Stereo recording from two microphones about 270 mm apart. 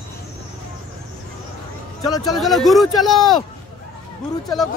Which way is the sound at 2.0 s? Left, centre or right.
Centre.